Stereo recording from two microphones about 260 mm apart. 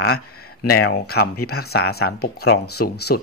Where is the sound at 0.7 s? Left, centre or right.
Left.